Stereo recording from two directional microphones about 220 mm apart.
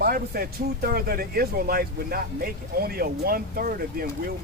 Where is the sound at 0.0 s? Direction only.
45° right (ahead or behind).